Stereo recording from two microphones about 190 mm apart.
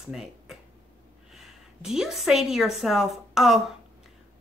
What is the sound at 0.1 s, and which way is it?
A woman's voice, centre (ahead or behind).